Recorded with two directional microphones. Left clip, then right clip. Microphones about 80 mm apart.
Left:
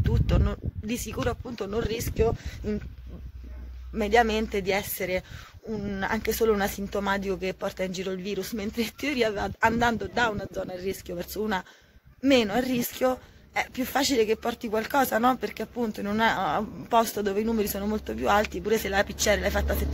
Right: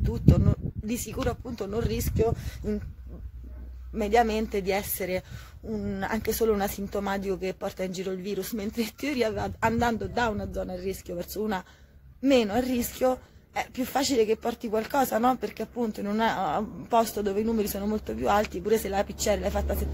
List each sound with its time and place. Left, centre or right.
0.0 s speech: right
4.0 s a woman's voice: right
8.5 s a woman's voice: right
18.5 s speech: right
18.9 s a woman's voice: right